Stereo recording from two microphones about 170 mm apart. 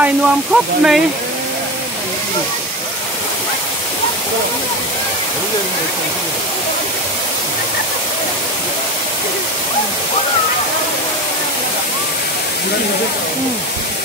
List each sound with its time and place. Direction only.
0.0 s speech: 5° right (ahead or behind)